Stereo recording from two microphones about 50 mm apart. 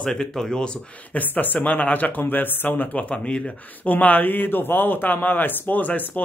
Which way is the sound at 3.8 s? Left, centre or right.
Left.